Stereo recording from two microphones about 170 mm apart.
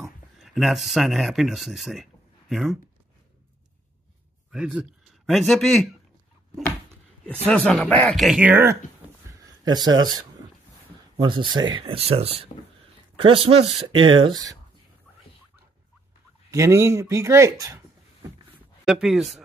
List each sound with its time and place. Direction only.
0.0 s speech: centre (ahead or behind)
4.5 s speech: 5° right (ahead or behind)
7.4 s speech: 5° left (ahead or behind); by 8.7 s 10° right (ahead or behind)
9.7 s speech: 25° right (ahead or behind)
16.4 s speech: 15° right (ahead or behind)
18.9 s speech: centre (ahead or behind)